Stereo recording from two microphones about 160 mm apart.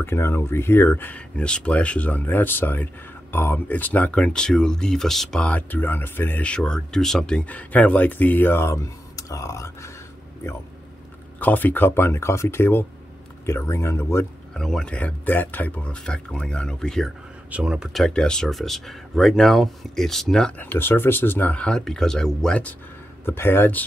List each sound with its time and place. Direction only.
0.0 s speech: 15° left (ahead or behind)
11.3 s speech: 10° left (ahead or behind)
14.5 s speech: 5° left (ahead or behind)
17.5 s speech: 5° right (ahead or behind); by 23.9 s 10° left (ahead or behind)